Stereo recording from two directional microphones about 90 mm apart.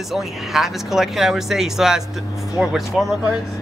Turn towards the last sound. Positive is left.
turn(degrees=0)  # may be behind; listen again after turning